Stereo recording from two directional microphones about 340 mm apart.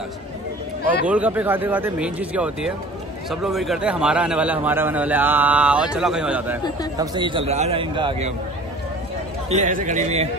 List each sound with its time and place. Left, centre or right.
1.0 s a man's voice: centre
9.5 s a man's voice: right